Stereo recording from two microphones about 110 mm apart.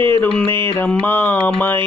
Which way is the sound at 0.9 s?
15° left (ahead or behind).